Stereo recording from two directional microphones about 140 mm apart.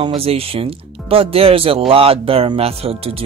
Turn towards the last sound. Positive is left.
turn(degrees=-45)  # may be behind; listen again after turning